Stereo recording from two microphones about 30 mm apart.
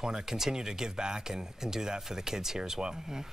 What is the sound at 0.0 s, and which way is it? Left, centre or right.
Speech, right.